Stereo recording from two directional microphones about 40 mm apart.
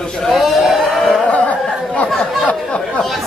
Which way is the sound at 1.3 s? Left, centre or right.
Left.